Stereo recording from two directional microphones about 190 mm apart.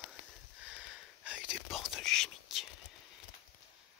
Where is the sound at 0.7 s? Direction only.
5° right (ahead or behind).